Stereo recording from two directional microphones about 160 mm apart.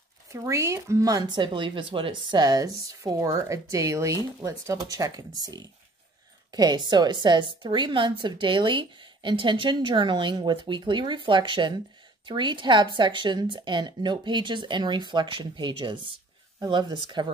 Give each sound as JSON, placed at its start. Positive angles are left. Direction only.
{"t": 0.3, "sound": "speech", "side_deg": -20}